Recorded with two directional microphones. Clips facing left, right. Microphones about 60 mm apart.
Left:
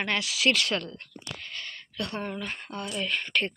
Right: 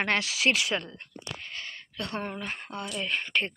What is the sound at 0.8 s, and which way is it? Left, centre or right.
A woman's voice, right.